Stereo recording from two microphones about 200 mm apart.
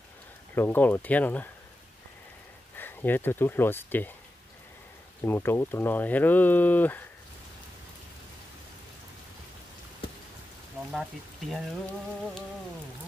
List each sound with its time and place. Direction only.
0.6 s speech: 10° left (ahead or behind)
2.8 s speech: 10° left (ahead or behind)
5.2 s speech: 10° left (ahead or behind)
10.9 s speech: centre (ahead or behind)